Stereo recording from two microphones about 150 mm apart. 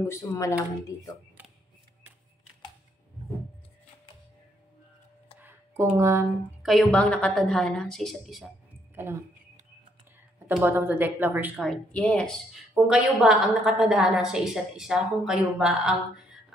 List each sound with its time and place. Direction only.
0.0 s speech: 15° left (ahead or behind)
5.4 s a sound: 15° right (ahead or behind)
6.6 s a woman's voice: centre (ahead or behind)
8.9 s speech: 15° right (ahead or behind)
10.6 s a woman's voice: 15° right (ahead or behind)
11.6 s a woman's voice: 5° left (ahead or behind)